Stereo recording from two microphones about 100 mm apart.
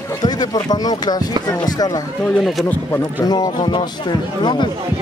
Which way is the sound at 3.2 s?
45° left (ahead or behind).